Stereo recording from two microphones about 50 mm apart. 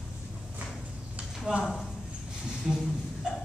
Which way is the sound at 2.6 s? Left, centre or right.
Centre.